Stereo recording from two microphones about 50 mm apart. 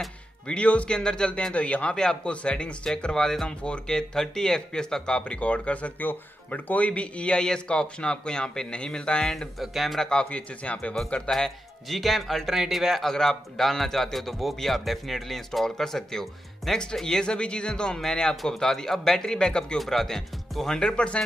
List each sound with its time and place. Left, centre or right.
0.5 s a man's voice: left
1.5 s a man's voice: left
9.6 s speech: centre
10.0 s speech: left
11.2 s a man's voice: centre
19.8 s a man's voice: centre